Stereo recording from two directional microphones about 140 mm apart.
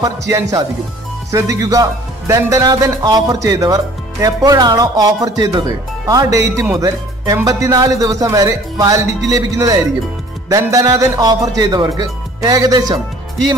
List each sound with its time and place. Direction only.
0.0 s a man's voice: 25° right (ahead or behind)